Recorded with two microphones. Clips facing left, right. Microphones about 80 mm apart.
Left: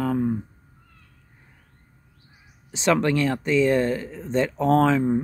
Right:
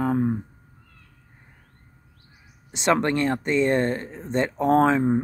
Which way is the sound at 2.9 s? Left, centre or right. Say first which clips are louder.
Even; right.